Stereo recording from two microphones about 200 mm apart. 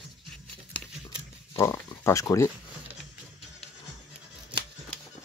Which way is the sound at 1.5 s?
15° left (ahead or behind).